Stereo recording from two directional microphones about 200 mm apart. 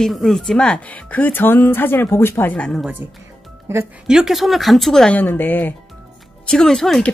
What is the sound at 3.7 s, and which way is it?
Speech, 10° right (ahead or behind).